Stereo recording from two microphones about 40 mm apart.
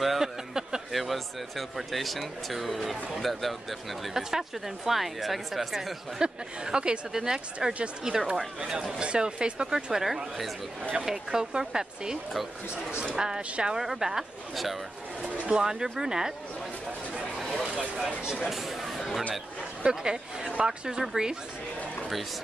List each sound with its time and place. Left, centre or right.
0.0 s a sound: centre
0.6 s a sound: centre
0.9 s speech: centre
6.1 s speech: right
10.0 s speech: centre
10.8 s speech: right
11.1 s speech: centre
15.3 s speech: right
15.6 s speech: centre
17.6 s a sound: centre
18.4 s a sound: centre
19.8 s speech: right